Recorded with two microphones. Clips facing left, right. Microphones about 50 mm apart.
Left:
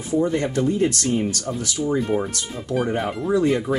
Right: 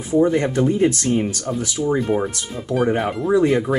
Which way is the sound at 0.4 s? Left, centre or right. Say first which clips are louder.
Right 3 dB; right.